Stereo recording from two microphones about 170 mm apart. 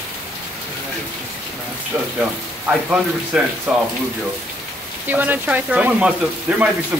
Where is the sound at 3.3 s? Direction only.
5° right (ahead or behind).